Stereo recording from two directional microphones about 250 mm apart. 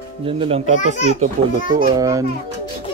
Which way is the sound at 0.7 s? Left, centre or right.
Left.